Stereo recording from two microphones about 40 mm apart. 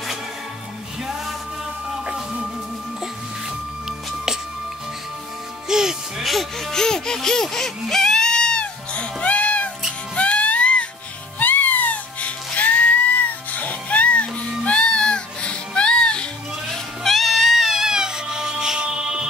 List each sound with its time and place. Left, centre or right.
2.0 s music: right
5.7 s music: centre
6.7 s speech: centre
7.4 s baby cry: centre; by 9.7 s left
10.1 s music: left
11.3 s music: left
16.7 s music: centre